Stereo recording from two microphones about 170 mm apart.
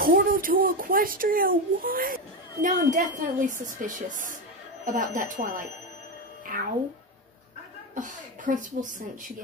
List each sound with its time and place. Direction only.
0.0 s a child's voice: 60° right (ahead or behind)
7.9 s speech: 50° right (ahead or behind)